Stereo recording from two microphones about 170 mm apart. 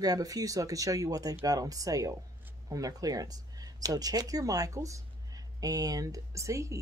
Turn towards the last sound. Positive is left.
turn(degrees=-15)  # may be behind; listen again after turning